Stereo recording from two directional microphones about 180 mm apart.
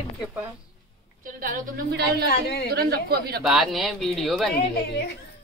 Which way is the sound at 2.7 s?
60° right (ahead or behind).